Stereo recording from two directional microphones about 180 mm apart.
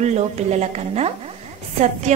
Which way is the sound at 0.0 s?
40° right (ahead or behind).